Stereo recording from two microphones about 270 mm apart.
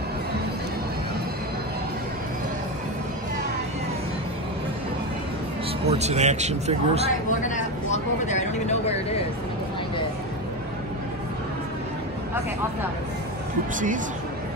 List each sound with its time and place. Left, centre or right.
5.9 s a man's voice: right
7.2 s speech: left